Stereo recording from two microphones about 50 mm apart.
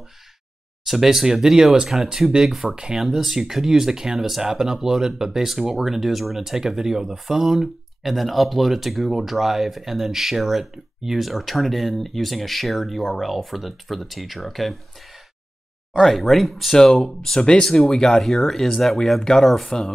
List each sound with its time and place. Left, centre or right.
0.8 s speech: centre
15.9 s speech: centre
16.7 s speech: centre